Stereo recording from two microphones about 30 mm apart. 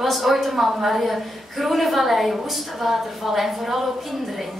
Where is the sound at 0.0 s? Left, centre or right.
Centre.